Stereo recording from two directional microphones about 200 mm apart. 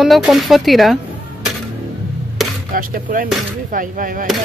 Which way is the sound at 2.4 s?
Centre (ahead or behind).